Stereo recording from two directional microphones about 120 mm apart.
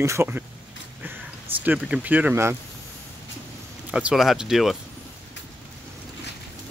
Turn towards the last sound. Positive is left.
turn(degrees=0)  # may be behind; listen again after turning